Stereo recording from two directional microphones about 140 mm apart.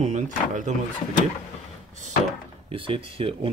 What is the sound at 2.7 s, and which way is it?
Speech, 40° right (ahead or behind).